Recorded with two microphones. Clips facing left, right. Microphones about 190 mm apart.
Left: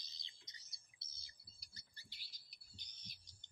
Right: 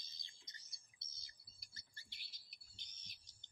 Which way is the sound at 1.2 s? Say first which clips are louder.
Left 1 dB; 50° right (ahead or behind).